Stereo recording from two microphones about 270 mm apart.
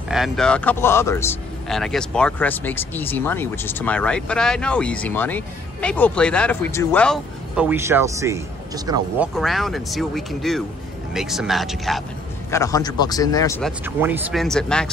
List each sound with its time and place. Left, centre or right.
0.1 s a man's voice: centre
9.3 s a man's voice: centre
12.4 s a man's voice: centre
13.6 s a man's voice: centre